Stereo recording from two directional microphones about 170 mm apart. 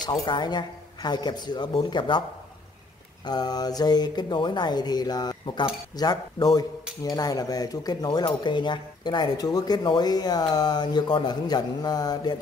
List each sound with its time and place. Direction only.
0.0 s speech: 25° left (ahead or behind)
3.3 s speech: 25° left (ahead or behind)